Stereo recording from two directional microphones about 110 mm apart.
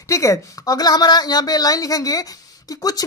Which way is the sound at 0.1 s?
30° left (ahead or behind).